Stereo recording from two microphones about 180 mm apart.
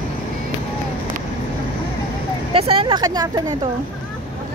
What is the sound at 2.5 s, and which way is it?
Vehicle, 30° right (ahead or behind).